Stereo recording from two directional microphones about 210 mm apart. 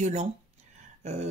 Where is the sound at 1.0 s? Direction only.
30° right (ahead or behind).